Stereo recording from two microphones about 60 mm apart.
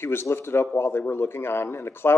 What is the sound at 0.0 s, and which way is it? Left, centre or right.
A man's voice, left.